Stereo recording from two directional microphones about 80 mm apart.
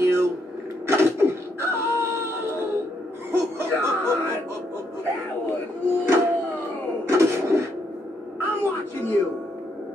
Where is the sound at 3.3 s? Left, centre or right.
Right.